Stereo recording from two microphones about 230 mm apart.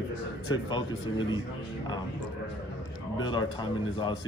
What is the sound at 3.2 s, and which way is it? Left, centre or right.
Speech, centre.